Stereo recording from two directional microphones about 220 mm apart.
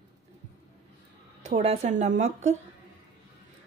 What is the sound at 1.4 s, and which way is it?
A woman's voice, 30° right (ahead or behind).